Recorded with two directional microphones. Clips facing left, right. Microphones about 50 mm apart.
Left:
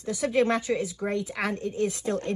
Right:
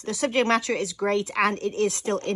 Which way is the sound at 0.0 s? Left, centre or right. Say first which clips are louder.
Right 1 dB; right.